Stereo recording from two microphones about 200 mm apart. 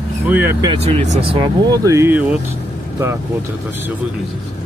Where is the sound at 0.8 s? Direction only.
30° right (ahead or behind); by 2.4 s 10° right (ahead or behind).